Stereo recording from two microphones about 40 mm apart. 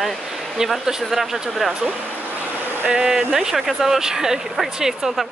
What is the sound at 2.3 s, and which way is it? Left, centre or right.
Vehicle, right.